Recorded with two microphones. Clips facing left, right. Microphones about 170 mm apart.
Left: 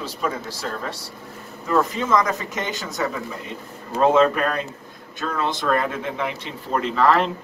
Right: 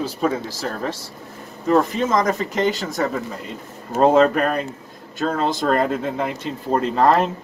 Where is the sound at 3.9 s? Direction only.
50° right (ahead or behind).